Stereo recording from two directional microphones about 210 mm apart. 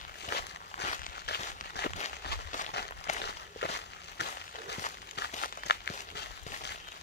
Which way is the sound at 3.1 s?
35° left (ahead or behind).